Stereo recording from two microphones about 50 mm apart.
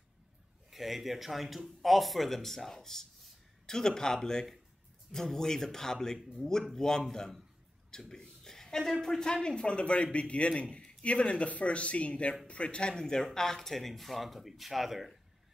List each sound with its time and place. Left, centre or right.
0.7 s speech: centre
8.1 s a sound: centre
9.0 s a man's voice: centre